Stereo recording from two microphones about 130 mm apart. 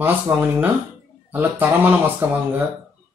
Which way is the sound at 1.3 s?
15° right (ahead or behind).